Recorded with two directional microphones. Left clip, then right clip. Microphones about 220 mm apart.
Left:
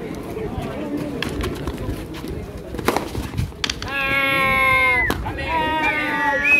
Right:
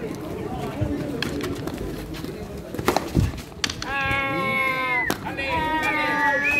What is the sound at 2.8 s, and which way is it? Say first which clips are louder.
Horse: left 2 dB; 15° left (ahead or behind).